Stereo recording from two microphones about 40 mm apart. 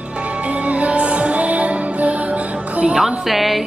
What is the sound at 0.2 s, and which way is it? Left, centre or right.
Music, right.